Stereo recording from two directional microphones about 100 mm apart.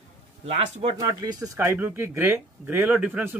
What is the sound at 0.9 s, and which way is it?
Speech, 40° right (ahead or behind).